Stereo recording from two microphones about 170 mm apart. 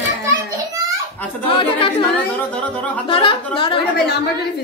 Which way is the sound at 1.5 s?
30° left (ahead or behind).